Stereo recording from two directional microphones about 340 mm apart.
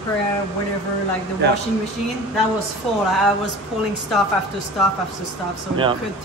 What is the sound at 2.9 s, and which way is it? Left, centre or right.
Speech, centre.